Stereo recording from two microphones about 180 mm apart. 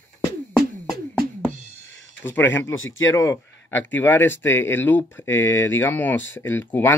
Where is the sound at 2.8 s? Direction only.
90° left.